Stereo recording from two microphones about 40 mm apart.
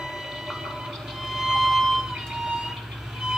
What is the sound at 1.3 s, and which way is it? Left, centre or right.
Music, centre.